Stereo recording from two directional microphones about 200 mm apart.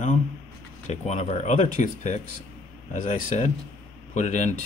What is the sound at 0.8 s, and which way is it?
Speech, 35° left (ahead or behind).